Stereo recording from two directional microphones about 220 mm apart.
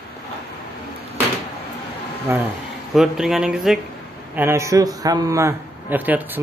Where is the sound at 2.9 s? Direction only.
Centre (ahead or behind).